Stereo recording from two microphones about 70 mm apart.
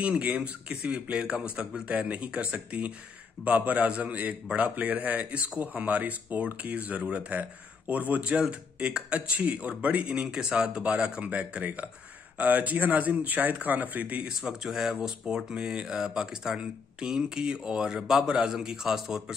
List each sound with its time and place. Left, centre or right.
0.2 s speech: centre
14.4 s speech: centre